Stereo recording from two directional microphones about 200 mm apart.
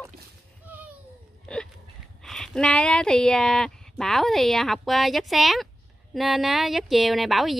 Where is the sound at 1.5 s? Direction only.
5° left (ahead or behind).